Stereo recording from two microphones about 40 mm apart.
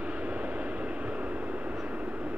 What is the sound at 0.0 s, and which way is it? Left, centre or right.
Vehicle, right.